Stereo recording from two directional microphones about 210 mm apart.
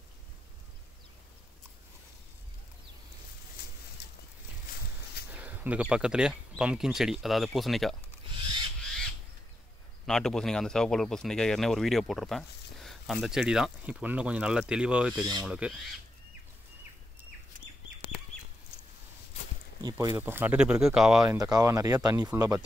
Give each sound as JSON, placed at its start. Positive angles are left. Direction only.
{"t": 4.0, "sound": "a sound", "side_deg": 50}
{"t": 5.3, "sound": "speech", "side_deg": -10}
{"t": 8.8, "sound": "crow", "side_deg": 5}
{"t": 10.0, "sound": "speech", "side_deg": 0}
{"t": 19.8, "sound": "speech", "side_deg": -20}
{"t": 21.4, "sound": "speech", "side_deg": -15}